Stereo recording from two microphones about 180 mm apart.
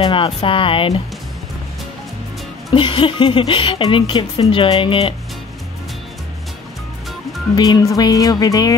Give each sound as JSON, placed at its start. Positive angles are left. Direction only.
{"t": 0.0, "sound": "a woman's voice", "side_deg": 30}
{"t": 2.7, "sound": "a woman's voice", "side_deg": 30}
{"t": 7.5, "sound": "a woman's voice", "side_deg": 25}